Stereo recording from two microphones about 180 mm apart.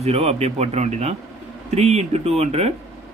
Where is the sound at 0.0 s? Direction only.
35° right (ahead or behind).